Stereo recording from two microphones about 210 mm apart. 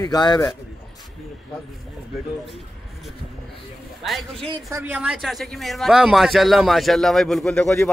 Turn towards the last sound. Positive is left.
turn(degrees=5)  # may be behind; listen again after turning